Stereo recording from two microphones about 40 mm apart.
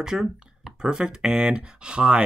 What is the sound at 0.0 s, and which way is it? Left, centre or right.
Speech, centre.